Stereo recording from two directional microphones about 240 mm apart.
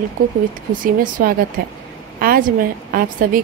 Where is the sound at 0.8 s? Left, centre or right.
Right.